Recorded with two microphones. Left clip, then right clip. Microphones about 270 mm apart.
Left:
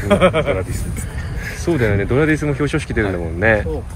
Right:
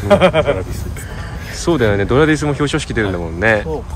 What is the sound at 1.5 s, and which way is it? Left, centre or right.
Speech, centre.